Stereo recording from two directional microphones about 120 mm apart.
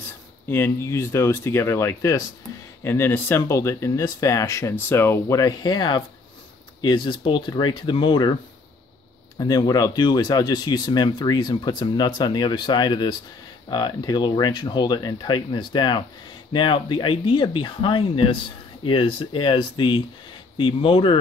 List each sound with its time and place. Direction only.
0.5 s speech: 20° left (ahead or behind); by 8.4 s 40° left (ahead or behind)
9.4 s speech: 35° left (ahead or behind)